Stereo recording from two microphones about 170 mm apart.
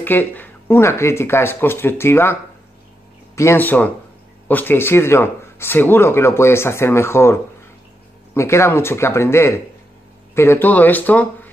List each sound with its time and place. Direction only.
0.0 s speech: 10° left (ahead or behind)
3.3 s speech: 15° left (ahead or behind)
8.4 s speech: 15° left (ahead or behind)